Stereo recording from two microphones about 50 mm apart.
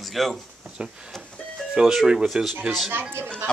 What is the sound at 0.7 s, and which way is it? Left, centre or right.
Speech, centre.